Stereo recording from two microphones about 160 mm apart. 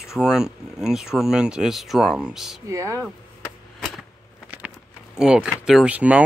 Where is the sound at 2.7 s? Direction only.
20° right (ahead or behind).